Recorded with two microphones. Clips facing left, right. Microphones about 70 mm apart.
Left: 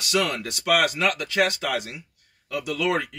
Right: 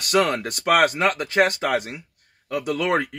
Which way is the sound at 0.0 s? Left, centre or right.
Right.